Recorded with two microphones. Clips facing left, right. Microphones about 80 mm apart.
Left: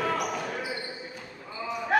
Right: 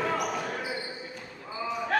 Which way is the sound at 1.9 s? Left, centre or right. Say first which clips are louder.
Left 3 dB; centre.